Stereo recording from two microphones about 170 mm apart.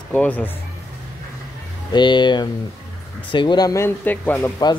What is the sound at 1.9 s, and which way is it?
Speech, 25° left (ahead or behind).